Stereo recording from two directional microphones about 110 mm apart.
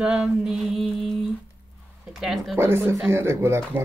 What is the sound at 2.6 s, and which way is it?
Speech, 20° right (ahead or behind).